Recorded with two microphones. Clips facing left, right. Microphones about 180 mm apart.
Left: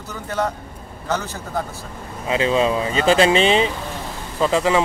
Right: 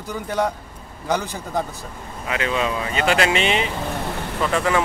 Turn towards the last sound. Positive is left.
turn(degrees=20)  # may be behind; listen again after turning